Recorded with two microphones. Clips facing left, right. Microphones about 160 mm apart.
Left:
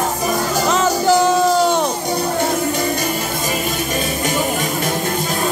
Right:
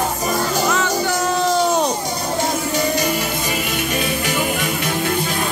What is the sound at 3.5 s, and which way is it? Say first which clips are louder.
Music: left 1 dB; 40° left (ahead or behind).